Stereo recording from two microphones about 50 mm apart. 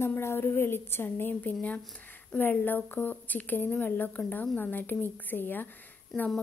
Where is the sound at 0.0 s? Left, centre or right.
Left.